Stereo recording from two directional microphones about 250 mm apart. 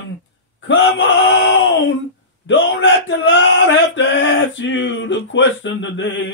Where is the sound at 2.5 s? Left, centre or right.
Left.